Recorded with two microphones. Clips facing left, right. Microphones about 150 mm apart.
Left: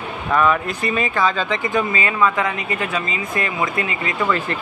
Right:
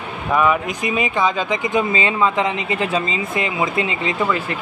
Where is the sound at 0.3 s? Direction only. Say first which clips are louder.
Even; 10° right (ahead or behind).